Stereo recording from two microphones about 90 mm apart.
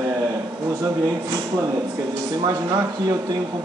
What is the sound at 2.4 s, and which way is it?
Speech, 45° right (ahead or behind).